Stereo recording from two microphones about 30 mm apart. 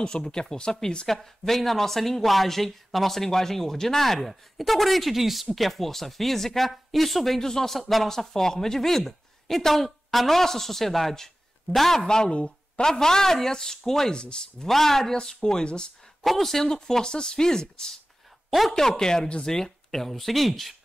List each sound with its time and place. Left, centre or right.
0.0 s speech: left
1.0 s speech: centre
7.4 s speech: centre
12.0 s speech: left
12.4 s a sound: left
12.8 s speech: centre
14.1 s speech: left
14.7 s speech: centre; by 16.3 s left
16.3 s speech: centre
19.2 s speech: left
19.5 s speech: centre